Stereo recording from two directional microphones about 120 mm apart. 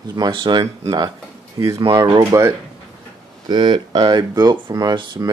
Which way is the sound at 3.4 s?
40° right (ahead or behind).